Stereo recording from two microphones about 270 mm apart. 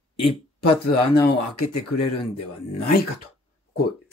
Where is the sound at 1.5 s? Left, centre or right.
Left.